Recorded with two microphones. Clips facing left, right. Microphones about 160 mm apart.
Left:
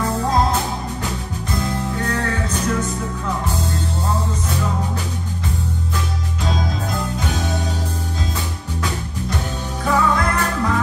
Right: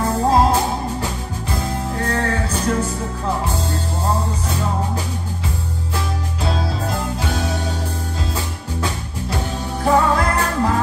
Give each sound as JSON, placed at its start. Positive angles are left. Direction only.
{"t": 0.2, "sound": "music", "side_deg": -30}
{"t": 9.8, "sound": "music", "side_deg": -35}